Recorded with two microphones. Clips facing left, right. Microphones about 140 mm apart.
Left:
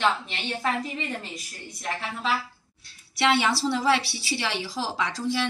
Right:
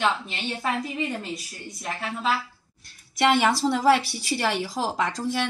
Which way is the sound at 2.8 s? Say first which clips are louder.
Right 3 dB; 45° right (ahead or behind).